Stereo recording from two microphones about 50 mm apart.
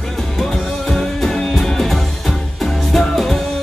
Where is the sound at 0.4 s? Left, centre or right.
Centre.